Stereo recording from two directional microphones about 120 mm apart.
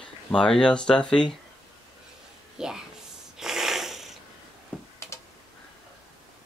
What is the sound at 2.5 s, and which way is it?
Speech, 5° right (ahead or behind).